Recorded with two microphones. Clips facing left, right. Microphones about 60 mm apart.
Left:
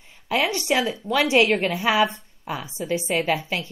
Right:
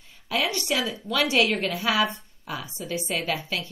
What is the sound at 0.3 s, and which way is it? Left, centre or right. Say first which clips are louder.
A woman's voice: left 4 dB; left.